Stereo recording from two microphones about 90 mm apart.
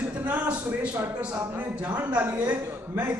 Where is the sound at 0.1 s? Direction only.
15° right (ahead or behind).